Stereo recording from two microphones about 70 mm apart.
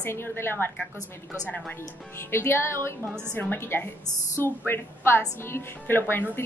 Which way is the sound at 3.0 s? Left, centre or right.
Right.